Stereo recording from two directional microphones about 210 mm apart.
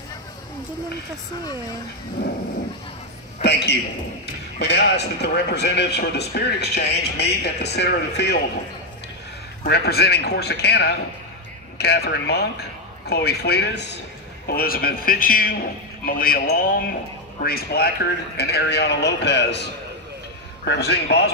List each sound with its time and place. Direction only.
3.4 s speech: 55° left (ahead or behind)
9.6 s speech: 50° left (ahead or behind)